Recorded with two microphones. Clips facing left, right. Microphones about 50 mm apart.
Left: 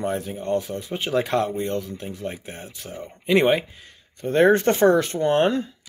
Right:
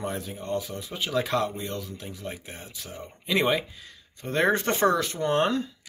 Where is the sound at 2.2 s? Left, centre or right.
Centre.